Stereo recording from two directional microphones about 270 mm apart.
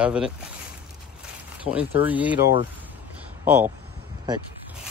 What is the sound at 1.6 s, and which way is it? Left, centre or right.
Speech, centre.